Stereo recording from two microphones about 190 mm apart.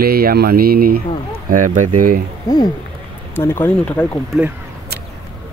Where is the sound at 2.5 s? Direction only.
20° left (ahead or behind).